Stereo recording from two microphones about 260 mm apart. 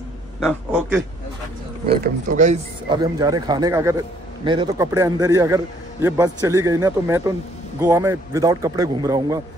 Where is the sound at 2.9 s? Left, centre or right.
Centre.